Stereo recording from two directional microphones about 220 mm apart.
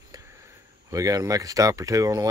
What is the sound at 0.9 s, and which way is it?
Speech, 15° right (ahead or behind).